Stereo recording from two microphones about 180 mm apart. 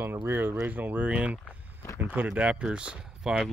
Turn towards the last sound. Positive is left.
turn(degrees=-5)  # may be behind; listen again after turning